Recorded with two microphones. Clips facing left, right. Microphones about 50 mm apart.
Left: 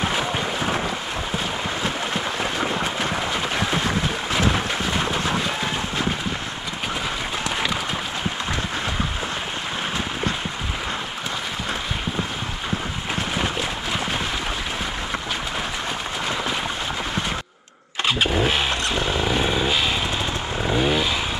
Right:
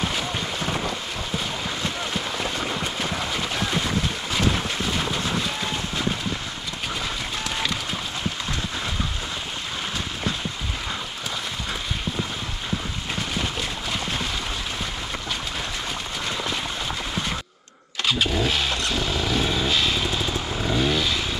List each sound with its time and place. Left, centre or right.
0.0 s boat: left
0.7 s boat: centre
2.3 s boat: centre
13.4 s boat: left
18.0 s vehicle: left